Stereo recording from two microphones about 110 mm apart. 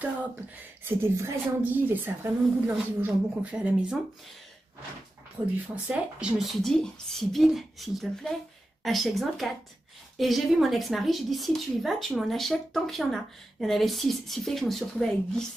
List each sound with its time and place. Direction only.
0.8 s a woman's voice: 25° right (ahead or behind)
5.9 s a woman's voice: 10° right (ahead or behind)